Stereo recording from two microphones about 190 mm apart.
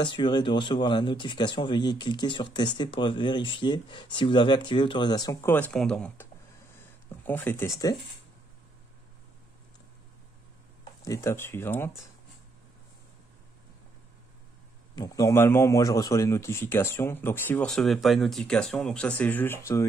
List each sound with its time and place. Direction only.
0.0 s speech: 25° left (ahead or behind); by 6.2 s 5° left (ahead or behind)
7.2 s a man's voice: 10° left (ahead or behind)
10.8 s speech: 15° left (ahead or behind)
15.0 s a man's voice: 20° left (ahead or behind)